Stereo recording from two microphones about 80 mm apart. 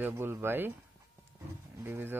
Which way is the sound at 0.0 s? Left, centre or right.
Right.